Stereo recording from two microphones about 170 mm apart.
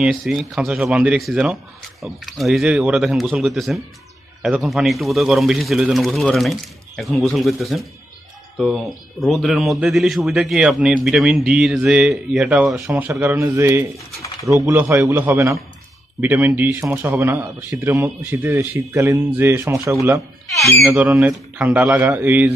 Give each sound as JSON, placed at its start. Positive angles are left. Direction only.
{"t": 0.0, "sound": "speech", "side_deg": 0}
{"t": 12.8, "sound": "a man's voice", "side_deg": -15}
{"t": 20.5, "sound": "a man's voice", "side_deg": 0}